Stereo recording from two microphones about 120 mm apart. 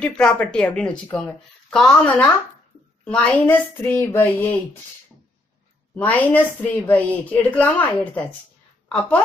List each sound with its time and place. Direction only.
0.0 s a woman's voice: 10° left (ahead or behind)
5.9 s a woman's voice: 15° left (ahead or behind)